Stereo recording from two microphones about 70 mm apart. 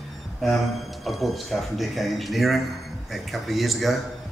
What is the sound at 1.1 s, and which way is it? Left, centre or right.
Speech, centre.